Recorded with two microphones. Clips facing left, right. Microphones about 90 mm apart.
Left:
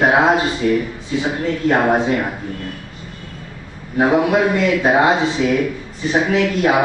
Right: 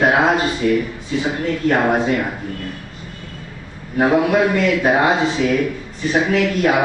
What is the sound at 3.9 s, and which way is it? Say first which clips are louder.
Speech: even; 15° left (ahead or behind).